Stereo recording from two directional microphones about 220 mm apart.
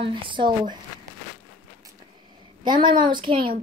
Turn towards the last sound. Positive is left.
turn(degrees=-25)  # may be behind; listen again after turning